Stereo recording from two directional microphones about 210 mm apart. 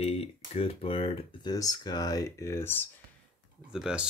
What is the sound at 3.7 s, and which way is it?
Speech, 5° right (ahead or behind).